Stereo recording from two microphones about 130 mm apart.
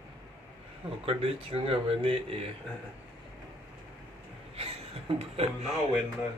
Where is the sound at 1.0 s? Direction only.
45° right (ahead or behind).